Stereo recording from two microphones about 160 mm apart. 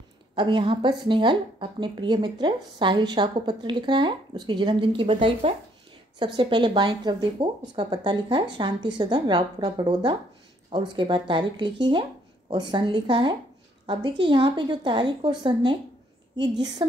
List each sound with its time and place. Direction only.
0.4 s a woman's voice: 30° right (ahead or behind)
6.1 s a woman's voice: 30° right (ahead or behind)